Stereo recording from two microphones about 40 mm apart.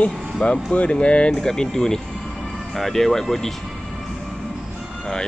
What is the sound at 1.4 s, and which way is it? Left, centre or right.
Speech, centre.